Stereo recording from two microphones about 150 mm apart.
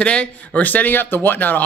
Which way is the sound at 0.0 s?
5° left (ahead or behind).